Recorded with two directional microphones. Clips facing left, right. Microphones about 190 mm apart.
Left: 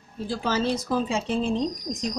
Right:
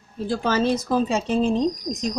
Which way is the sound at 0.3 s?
50° right (ahead or behind).